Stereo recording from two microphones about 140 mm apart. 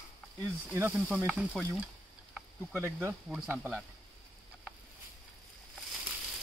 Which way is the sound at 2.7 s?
15° right (ahead or behind).